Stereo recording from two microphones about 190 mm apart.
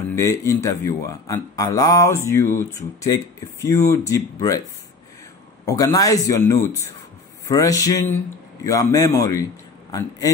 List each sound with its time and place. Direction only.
0.1 s speech: 15° left (ahead or behind)
5.7 s speech: 20° left (ahead or behind)